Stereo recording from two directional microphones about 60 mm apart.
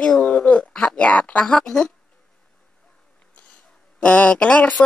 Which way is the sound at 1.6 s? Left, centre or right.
Centre.